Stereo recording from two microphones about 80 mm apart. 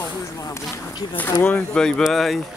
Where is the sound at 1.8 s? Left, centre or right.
Centre.